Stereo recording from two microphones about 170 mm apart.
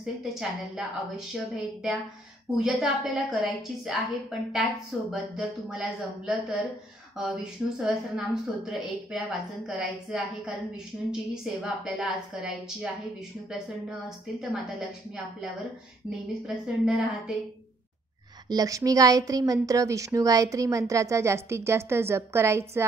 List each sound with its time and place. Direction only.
0.0 s a woman's voice: 5° right (ahead or behind)
14.0 s a woman's voice: centre (ahead or behind)
16.1 s a woman's voice: 5° right (ahead or behind)
18.5 s a woman's voice: 20° right (ahead or behind)